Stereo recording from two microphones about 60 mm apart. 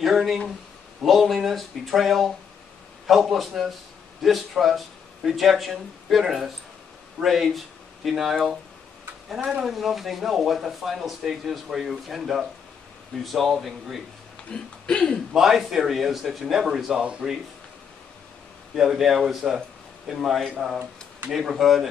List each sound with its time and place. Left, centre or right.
0.0 s speech: centre
14.5 s speech: centre
15.3 s speech: centre
18.8 s speech: centre